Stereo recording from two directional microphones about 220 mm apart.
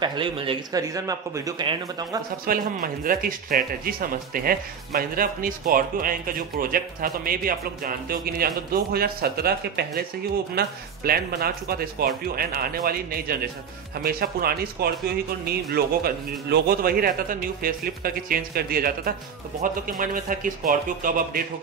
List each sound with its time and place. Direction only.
0.0 s speech: 20° right (ahead or behind)
2.4 s speech: 40° right (ahead or behind)
11.1 s speech: 45° right (ahead or behind)